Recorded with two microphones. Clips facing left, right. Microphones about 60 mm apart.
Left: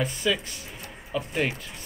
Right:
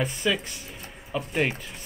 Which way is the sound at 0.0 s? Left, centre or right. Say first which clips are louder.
Even; centre.